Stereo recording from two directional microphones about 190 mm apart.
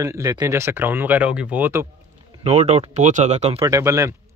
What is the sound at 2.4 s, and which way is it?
Speech, 35° right (ahead or behind).